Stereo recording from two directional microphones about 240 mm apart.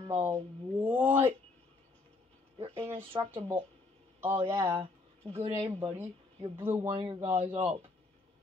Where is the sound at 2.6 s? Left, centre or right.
Right.